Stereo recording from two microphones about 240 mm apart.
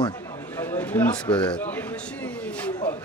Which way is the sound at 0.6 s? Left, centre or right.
Centre.